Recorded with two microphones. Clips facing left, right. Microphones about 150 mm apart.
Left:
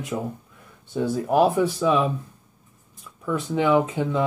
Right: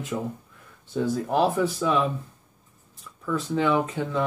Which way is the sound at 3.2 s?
10° left (ahead or behind).